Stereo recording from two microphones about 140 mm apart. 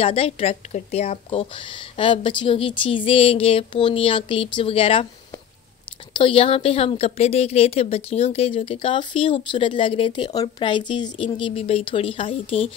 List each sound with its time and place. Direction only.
0.0 s a woman's voice: 45° left (ahead or behind)
6.1 s a woman's voice: 40° left (ahead or behind)